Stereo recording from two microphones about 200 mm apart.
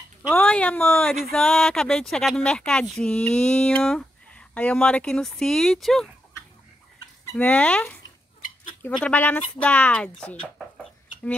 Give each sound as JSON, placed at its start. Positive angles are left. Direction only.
{"t": 0.3, "sound": "speech", "side_deg": 5}